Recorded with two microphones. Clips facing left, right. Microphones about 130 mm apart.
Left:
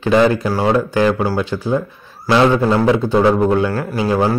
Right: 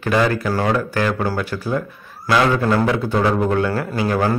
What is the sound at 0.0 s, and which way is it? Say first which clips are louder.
A man's voice: left 5 dB; 20° left (ahead or behind).